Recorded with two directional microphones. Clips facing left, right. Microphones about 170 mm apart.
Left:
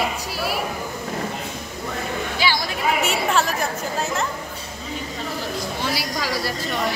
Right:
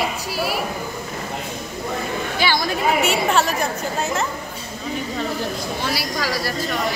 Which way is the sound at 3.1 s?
Centre (ahead or behind).